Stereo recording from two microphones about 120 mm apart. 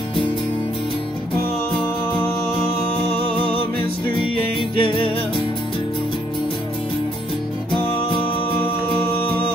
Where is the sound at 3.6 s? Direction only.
45° left (ahead or behind).